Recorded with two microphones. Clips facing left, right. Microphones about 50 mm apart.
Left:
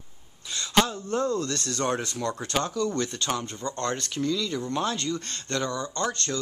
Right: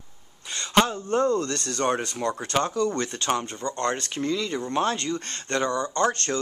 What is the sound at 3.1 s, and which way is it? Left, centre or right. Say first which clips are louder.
Speech: right 3 dB; right.